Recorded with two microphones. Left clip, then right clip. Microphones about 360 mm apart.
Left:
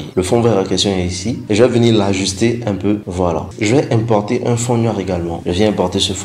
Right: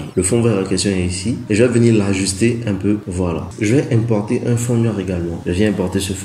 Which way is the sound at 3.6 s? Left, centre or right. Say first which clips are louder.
Left 2 dB; centre.